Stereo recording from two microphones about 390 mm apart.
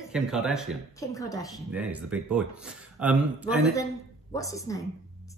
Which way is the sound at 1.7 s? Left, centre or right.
Centre.